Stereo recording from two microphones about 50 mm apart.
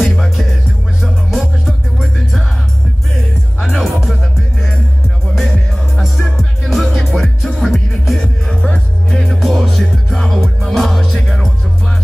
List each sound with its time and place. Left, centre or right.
0.0 s music: centre
3.6 s music: centre
5.9 s music: centre
8.6 s music: left
9.2 s music: centre